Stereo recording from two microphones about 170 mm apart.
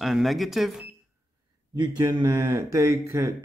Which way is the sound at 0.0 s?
Centre (ahead or behind).